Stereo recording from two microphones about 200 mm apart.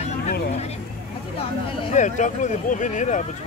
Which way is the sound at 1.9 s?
35° left (ahead or behind).